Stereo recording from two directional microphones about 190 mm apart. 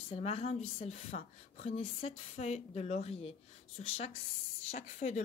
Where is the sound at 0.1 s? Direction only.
30° left (ahead or behind).